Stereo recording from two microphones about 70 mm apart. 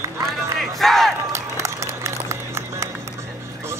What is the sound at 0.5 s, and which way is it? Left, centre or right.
Battle cry, centre.